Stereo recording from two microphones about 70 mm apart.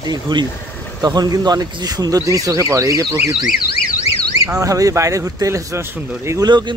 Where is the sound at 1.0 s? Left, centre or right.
Right.